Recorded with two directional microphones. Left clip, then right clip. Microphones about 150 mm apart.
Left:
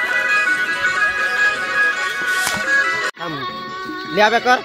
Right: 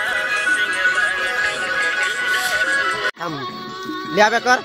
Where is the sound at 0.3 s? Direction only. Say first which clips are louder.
Left 2 dB; 20° left (ahead or behind).